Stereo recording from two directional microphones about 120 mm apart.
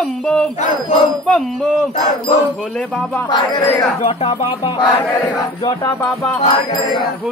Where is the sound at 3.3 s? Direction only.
35° left (ahead or behind).